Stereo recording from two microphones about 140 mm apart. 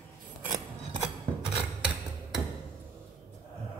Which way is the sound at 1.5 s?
5° right (ahead or behind).